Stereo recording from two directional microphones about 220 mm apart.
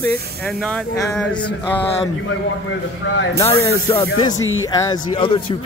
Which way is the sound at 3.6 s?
15° left (ahead or behind).